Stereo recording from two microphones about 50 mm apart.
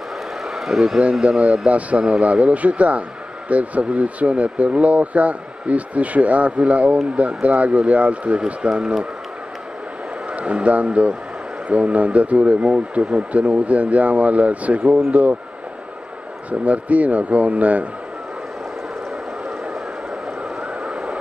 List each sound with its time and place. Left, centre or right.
0.6 s speech: centre
1.2 s speech: right
10.3 s speech: right
16.4 s speech: right
20.8 s vehicle: right